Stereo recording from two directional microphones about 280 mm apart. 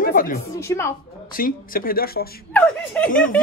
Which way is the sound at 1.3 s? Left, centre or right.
Left.